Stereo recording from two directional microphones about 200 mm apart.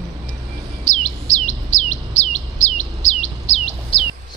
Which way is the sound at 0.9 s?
35° left (ahead or behind).